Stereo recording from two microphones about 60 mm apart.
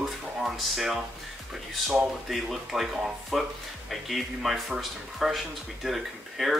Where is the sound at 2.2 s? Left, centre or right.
Centre.